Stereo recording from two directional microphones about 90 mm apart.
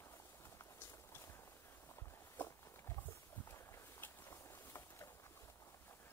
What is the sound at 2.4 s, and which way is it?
Walk, 20° left (ahead or behind).